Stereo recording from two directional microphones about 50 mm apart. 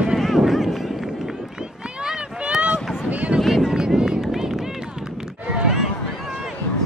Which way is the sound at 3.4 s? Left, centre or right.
Centre.